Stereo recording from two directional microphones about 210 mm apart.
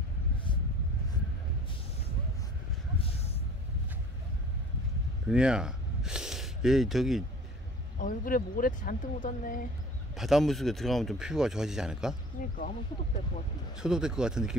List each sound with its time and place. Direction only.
5.3 s speech: 5° right (ahead or behind)
8.0 s speech: 40° left (ahead or behind)
10.1 s speech: centre (ahead or behind)
12.5 s speech: 40° left (ahead or behind)
13.7 s speech: 5° right (ahead or behind)